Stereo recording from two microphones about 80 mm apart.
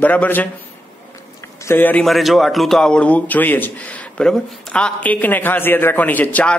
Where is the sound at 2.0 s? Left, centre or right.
Centre.